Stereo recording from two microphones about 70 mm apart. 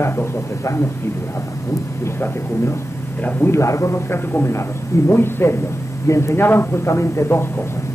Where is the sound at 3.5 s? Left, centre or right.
Left.